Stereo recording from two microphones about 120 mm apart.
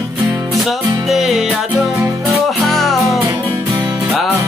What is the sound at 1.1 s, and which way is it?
Music, centre (ahead or behind).